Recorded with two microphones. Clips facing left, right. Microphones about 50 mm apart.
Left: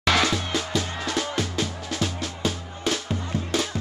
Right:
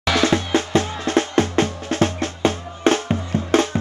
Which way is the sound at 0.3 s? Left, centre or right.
Right.